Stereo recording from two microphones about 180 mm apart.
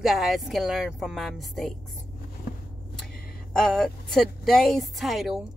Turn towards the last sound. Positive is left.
turn(degrees=0)  # may be behind; listen again after turning